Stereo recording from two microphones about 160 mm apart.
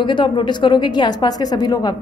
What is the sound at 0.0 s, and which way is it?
A woman's voice, 30° left (ahead or behind).